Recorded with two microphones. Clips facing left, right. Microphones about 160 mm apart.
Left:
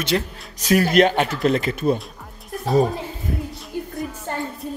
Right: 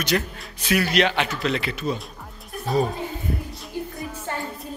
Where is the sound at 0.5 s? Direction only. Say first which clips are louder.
Left 5 dB; 40° left (ahead or behind).